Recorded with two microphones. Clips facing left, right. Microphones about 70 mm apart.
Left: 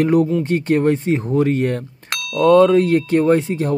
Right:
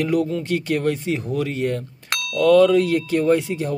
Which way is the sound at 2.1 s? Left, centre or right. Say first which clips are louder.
Left 2 dB; centre.